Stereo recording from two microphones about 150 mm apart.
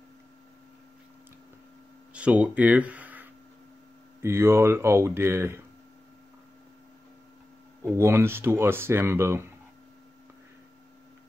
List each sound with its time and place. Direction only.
2.1 s speech: 10° right (ahead or behind)
7.9 s speech: 20° right (ahead or behind)